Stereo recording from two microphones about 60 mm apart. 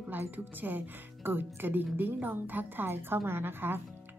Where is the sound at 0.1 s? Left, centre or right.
Right.